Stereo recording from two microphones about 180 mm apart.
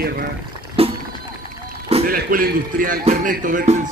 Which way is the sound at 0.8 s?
30° right (ahead or behind).